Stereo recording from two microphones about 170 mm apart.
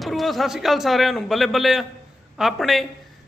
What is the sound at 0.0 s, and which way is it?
A man's voice, centre (ahead or behind).